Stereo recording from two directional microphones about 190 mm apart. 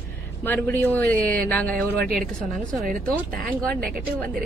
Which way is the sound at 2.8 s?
45° right (ahead or behind).